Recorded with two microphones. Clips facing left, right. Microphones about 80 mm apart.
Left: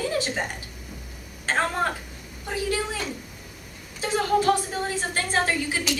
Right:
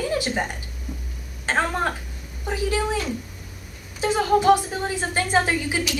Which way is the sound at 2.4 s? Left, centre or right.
Centre.